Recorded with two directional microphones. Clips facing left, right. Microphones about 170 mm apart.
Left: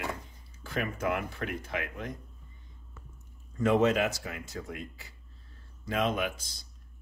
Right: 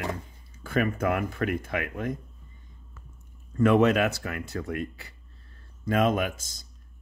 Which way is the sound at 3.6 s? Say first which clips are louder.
Right 4 dB; 65° right (ahead or behind).